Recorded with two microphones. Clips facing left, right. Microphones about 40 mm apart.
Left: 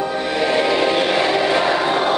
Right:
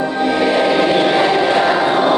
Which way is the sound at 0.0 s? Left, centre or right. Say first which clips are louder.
Right 4 dB; centre.